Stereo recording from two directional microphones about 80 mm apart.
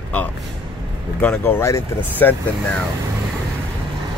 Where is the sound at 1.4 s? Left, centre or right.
Left.